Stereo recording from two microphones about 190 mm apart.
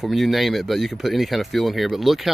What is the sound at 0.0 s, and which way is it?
Speech, centre (ahead or behind).